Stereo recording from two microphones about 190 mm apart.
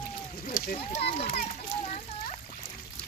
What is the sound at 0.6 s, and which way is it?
Speech, 45° left (ahead or behind).